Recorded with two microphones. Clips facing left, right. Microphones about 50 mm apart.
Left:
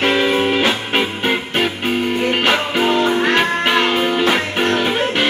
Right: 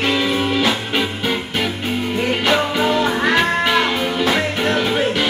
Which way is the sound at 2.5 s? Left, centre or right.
Centre.